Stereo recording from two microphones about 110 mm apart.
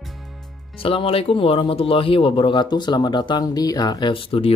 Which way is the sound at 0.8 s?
55° left (ahead or behind).